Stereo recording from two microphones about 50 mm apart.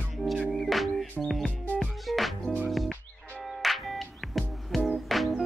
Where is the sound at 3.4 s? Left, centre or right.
Centre.